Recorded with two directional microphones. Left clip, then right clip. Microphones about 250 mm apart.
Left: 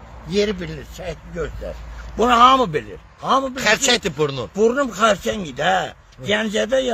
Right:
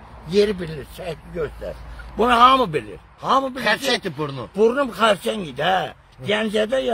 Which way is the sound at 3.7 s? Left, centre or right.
Left.